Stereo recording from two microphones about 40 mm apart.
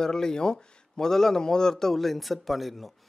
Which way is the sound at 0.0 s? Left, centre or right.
Centre.